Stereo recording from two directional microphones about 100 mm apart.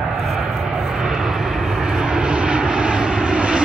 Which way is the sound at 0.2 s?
Centre (ahead or behind).